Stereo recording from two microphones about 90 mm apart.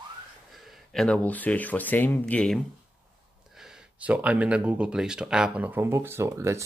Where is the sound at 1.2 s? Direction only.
20° left (ahead or behind).